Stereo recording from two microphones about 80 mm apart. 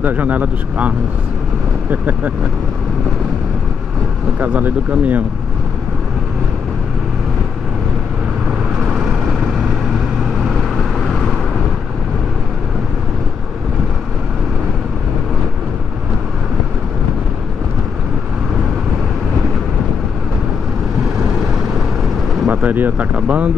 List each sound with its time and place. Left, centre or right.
0.0 s speech: right
4.4 s speech: centre
8.8 s vehicle: centre
22.5 s speech: right